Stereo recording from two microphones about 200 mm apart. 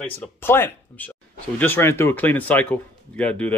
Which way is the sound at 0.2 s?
10° left (ahead or behind).